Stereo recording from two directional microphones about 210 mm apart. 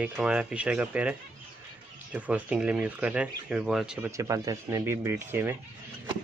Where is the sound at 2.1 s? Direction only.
5° right (ahead or behind).